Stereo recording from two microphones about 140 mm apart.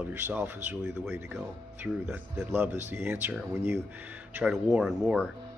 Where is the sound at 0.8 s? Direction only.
5° right (ahead or behind).